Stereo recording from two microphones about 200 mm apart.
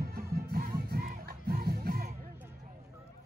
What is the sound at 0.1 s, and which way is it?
Music, 50° right (ahead or behind).